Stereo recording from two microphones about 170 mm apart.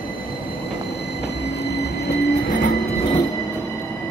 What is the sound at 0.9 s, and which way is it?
Train, 75° left (ahead or behind).